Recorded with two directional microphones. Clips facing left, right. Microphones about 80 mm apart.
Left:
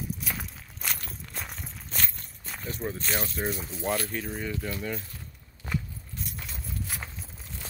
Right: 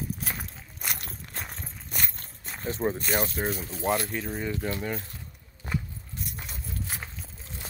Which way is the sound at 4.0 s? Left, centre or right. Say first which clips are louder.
Right 1 dB; centre.